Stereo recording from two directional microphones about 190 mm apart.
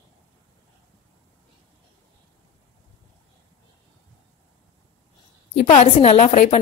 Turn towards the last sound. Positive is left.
turn(degrees=35)  # may be behind; listen again after turning